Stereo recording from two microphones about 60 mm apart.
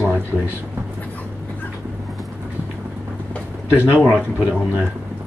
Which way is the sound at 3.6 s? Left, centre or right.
Right.